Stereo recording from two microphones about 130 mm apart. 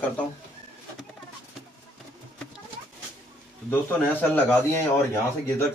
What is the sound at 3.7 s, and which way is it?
A man's voice, 15° left (ahead or behind).